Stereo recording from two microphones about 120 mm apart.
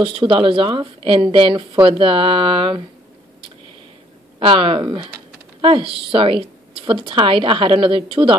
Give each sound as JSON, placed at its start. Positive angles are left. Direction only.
{"t": 0.0, "sound": "speech", "side_deg": -45}
{"t": 4.4, "sound": "speech", "side_deg": -45}